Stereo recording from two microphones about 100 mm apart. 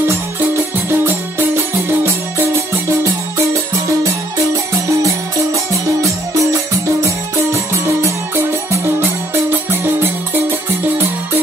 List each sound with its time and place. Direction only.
0.4 s music: 20° right (ahead or behind)
8.8 s music: 20° right (ahead or behind)